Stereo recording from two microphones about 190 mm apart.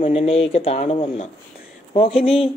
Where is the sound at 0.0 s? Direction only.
35° left (ahead or behind).